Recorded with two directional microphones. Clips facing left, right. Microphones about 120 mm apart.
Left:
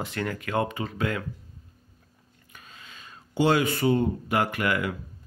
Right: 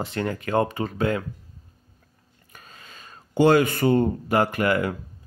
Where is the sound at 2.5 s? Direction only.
40° right (ahead or behind).